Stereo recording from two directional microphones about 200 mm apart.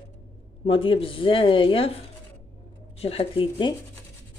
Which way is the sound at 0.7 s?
25° left (ahead or behind).